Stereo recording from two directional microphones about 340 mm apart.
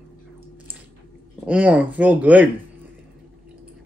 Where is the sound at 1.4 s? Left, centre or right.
Centre.